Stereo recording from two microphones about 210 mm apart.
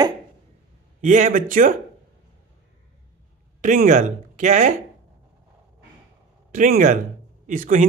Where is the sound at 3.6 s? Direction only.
35° right (ahead or behind).